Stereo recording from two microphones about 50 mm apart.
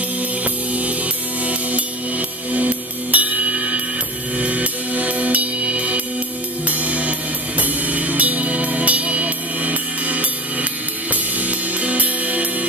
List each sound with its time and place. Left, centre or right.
0.4 s music: right